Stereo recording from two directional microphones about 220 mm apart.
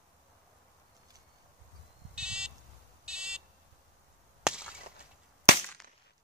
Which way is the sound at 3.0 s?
5° right (ahead or behind).